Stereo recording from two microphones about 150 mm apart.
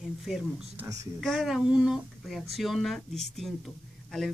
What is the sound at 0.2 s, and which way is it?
Speech, centre (ahead or behind).